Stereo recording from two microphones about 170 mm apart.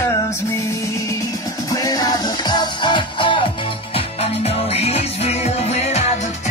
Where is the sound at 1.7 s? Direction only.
20° left (ahead or behind).